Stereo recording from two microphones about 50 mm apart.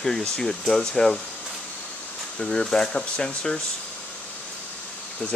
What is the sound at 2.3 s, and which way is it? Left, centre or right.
Speech, centre.